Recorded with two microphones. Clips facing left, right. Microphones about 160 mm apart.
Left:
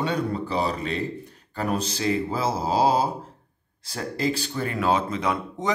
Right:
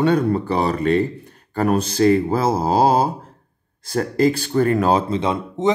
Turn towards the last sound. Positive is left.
turn(degrees=-25)  # may be behind; listen again after turning